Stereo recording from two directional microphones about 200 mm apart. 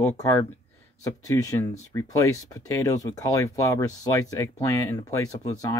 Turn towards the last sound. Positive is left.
turn(degrees=15)  # may be behind; listen again after turning